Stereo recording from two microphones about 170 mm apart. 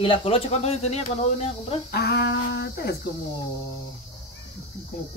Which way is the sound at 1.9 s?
70° left (ahead or behind).